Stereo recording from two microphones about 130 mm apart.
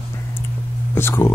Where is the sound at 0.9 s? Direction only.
20° left (ahead or behind).